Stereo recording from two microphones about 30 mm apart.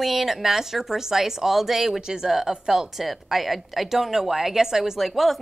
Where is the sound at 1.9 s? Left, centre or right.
Right.